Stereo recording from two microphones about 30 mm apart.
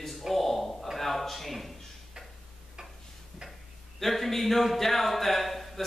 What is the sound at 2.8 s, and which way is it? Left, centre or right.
Tick-tock, right.